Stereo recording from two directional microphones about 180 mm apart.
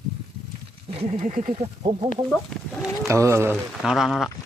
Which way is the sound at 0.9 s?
35° right (ahead or behind).